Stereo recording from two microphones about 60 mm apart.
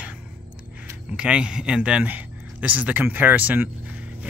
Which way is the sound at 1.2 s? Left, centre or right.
Centre.